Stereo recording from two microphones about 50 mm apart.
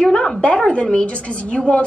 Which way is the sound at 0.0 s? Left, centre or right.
Centre.